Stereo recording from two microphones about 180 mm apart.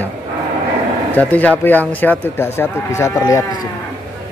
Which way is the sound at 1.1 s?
10° left (ahead or behind).